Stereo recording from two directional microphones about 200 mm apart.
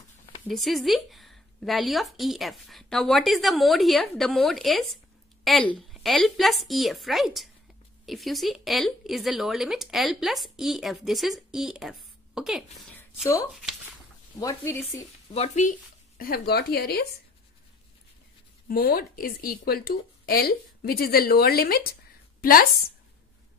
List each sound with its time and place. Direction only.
0.5 s speech: centre (ahead or behind)
14.4 s speech: 10° left (ahead or behind)
15.3 s speech: 35° left (ahead or behind)
16.2 s speech: 50° left (ahead or behind)
18.7 s a woman's voice: 50° left (ahead or behind)